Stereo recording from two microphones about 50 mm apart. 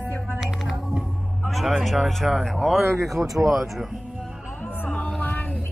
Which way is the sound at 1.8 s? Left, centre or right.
Centre.